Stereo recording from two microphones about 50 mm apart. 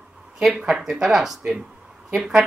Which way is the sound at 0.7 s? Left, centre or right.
Centre.